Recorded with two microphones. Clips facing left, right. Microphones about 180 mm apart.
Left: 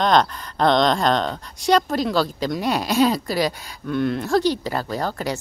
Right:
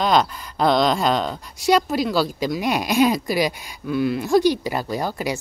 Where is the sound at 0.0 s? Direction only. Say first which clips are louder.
Left 1 dB; 5° right (ahead or behind).